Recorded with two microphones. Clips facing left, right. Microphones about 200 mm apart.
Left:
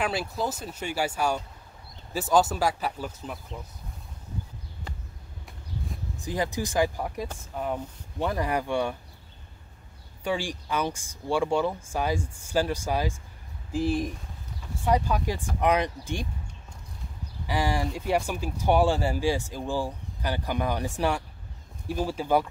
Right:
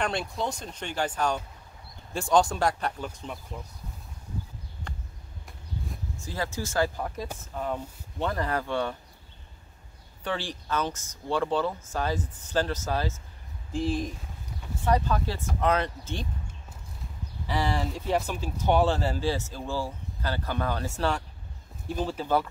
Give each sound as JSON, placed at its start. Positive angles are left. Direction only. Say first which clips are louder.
{"t": 0.0, "sound": "speech", "louder": "left 1 dB", "side_deg": 5}
{"t": 6.1, "sound": "speech", "louder": "left 4 dB", "side_deg": 15}
{"t": 10.2, "sound": "speech", "louder": "left 3 dB", "side_deg": 10}
{"t": 17.5, "sound": "speech", "louder": "left 1 dB", "side_deg": 10}